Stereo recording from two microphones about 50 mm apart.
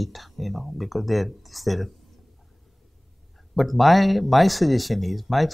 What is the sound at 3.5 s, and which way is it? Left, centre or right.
Speech, centre.